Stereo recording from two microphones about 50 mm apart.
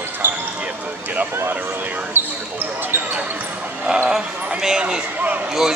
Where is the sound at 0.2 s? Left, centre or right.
Right.